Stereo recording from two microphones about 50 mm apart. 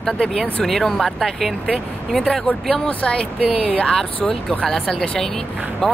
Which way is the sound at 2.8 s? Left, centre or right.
Left.